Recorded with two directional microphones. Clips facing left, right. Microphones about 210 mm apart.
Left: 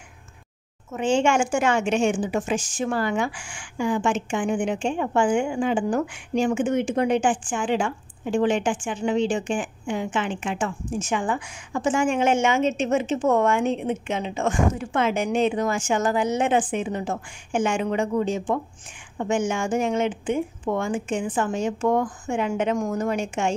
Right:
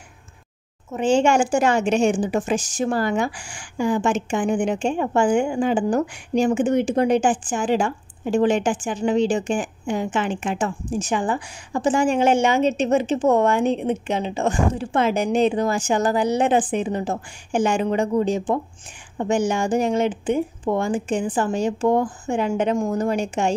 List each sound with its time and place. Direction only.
0.9 s a woman's voice: 40° right (ahead or behind)